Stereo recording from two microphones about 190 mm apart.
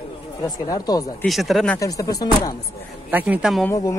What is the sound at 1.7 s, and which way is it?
Speech, 15° left (ahead or behind).